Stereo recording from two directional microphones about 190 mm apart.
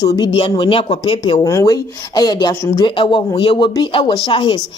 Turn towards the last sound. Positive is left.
turn(degrees=25)  # may be behind; listen again after turning